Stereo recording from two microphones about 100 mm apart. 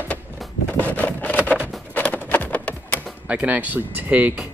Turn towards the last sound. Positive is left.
turn(degrees=-15)  # may be behind; listen again after turning